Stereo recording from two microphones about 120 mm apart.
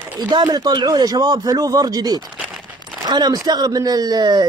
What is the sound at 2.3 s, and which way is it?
Crumpling, 5° right (ahead or behind).